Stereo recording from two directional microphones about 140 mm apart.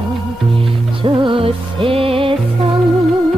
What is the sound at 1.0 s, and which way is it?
Music, 35° right (ahead or behind).